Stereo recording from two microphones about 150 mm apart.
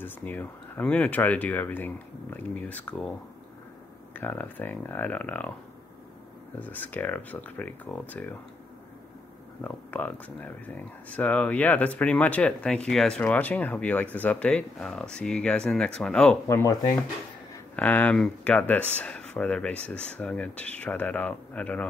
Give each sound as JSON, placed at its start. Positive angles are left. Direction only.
{"t": 0.0, "sound": "speech", "side_deg": 10}
{"t": 6.6, "sound": "speech", "side_deg": 10}
{"t": 9.6, "sound": "speech", "side_deg": 10}
{"t": 16.4, "sound": "speech", "side_deg": 20}
{"t": 17.7, "sound": "speech", "side_deg": 10}